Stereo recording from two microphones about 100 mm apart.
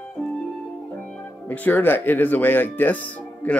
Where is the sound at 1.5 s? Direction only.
20° left (ahead or behind).